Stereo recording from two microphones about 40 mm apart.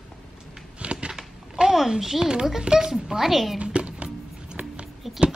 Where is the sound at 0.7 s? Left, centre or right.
Right.